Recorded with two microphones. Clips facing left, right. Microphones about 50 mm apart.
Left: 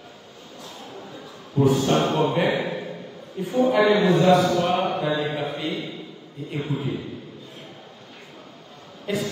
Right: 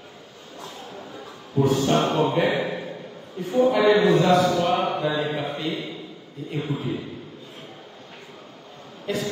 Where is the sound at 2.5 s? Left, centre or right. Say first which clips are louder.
Even; centre.